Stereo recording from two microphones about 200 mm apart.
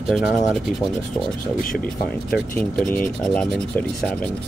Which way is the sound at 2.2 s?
5° left (ahead or behind).